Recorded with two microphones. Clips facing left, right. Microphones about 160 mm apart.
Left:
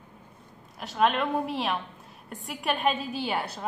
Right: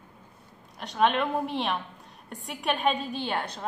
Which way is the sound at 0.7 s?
5° left (ahead or behind).